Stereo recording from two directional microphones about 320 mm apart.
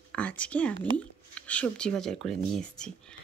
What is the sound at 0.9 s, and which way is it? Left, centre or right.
Speech, centre.